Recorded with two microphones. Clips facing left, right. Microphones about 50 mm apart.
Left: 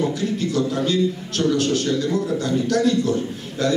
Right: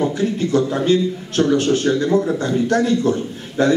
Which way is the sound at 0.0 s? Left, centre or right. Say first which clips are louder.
Right 3 dB; right.